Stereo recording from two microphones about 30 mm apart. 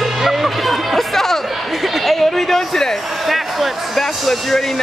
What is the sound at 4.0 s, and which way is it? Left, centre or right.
Speech, centre.